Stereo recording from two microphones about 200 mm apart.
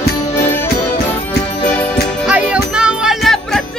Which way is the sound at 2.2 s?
5° right (ahead or behind).